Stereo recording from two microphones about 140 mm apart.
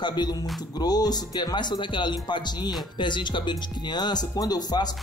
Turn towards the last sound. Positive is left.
turn(degrees=30)  # may be behind; listen again after turning